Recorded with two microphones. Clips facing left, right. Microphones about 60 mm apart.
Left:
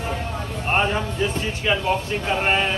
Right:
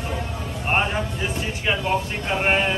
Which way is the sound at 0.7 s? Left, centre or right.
Centre.